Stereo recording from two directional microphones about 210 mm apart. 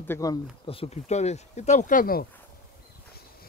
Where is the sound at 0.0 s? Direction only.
15° left (ahead or behind); by 2.2 s 40° left (ahead or behind).